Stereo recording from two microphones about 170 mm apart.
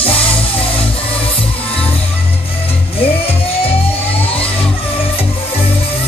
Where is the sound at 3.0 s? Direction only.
35° left (ahead or behind).